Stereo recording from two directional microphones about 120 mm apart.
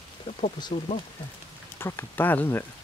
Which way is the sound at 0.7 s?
45° left (ahead or behind).